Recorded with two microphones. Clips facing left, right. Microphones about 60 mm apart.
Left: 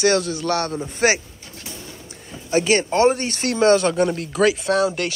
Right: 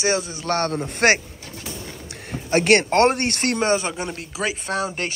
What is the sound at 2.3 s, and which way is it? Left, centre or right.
Speech, right.